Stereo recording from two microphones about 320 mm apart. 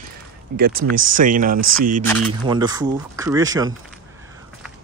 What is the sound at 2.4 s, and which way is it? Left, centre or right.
Speech, centre.